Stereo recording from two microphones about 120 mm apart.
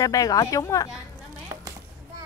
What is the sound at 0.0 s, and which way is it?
Speech, 30° left (ahead or behind).